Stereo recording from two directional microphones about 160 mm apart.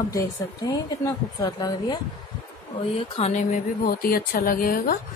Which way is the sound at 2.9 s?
40° left (ahead or behind).